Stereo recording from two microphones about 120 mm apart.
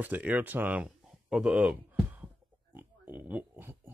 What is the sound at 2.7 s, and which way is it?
Pig, 15° right (ahead or behind).